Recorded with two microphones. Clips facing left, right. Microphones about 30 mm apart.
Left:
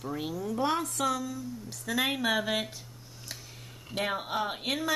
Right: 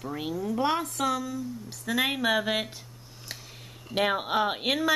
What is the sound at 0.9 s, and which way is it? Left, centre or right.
Speech, centre.